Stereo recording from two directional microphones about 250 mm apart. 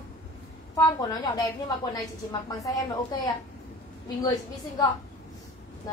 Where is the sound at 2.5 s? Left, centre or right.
Centre.